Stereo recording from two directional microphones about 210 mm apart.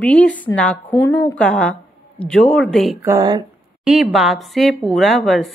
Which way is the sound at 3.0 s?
15° right (ahead or behind).